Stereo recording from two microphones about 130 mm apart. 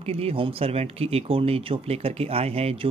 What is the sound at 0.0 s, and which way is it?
Speech, 50° right (ahead or behind).